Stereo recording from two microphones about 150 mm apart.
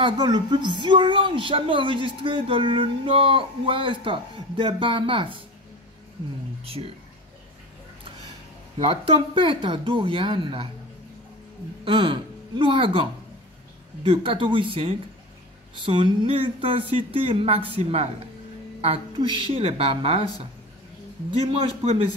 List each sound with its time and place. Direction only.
0.0 s speech: 30° right (ahead or behind)
6.6 s speech: 40° right (ahead or behind)
8.7 s speech: 35° right (ahead or behind)
11.8 s a woman's voice: 35° right (ahead or behind)
14.0 s speech: 35° right (ahead or behind)
19.1 s speech: 35° right (ahead or behind)
21.3 s speech: 35° right (ahead or behind)